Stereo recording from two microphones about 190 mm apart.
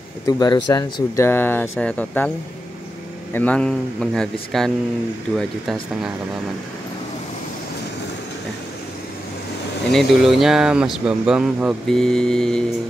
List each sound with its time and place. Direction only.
0.3 s speech: 20° left (ahead or behind)
3.3 s speech: 5° left (ahead or behind)
9.8 s speech: centre (ahead or behind)